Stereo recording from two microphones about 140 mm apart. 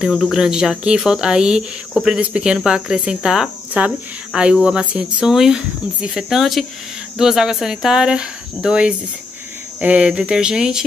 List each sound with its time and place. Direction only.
0.0 s speech: 5° right (ahead or behind)